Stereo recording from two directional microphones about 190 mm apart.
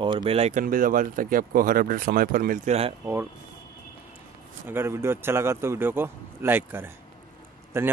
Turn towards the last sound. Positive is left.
turn(degrees=-15)  # may be behind; listen again after turning